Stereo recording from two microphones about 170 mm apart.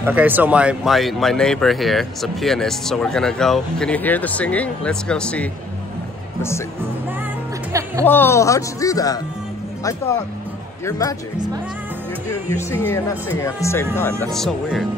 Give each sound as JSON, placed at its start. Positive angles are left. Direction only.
{"t": 0.0, "sound": "speech", "side_deg": -10}
{"t": 8.0, "sound": "speech", "side_deg": 10}
{"t": 10.9, "sound": "speech", "side_deg": 20}
{"t": 12.4, "sound": "speech", "side_deg": 15}
{"t": 14.3, "sound": "speech", "side_deg": 0}